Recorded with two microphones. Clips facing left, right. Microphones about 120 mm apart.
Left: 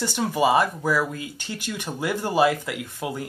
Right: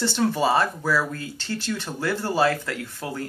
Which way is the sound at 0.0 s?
15° left (ahead or behind).